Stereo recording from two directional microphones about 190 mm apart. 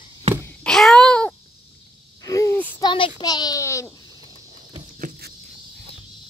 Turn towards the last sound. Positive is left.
turn(degrees=-45)  # may be behind; listen again after turning